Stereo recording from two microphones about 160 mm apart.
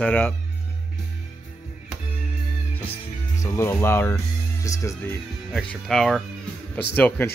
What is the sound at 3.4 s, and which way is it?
Speech, 15° left (ahead or behind).